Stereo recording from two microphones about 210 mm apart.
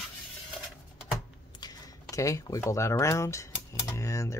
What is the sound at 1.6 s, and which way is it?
Speech, 15° left (ahead or behind).